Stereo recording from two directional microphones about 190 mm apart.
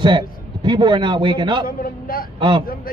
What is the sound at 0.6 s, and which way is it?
A man's voice, 25° right (ahead or behind).